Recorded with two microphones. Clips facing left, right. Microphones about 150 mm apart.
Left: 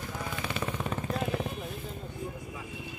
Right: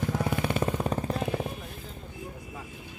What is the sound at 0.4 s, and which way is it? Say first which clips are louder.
Vehicle: right 6 dB; 40° right (ahead or behind).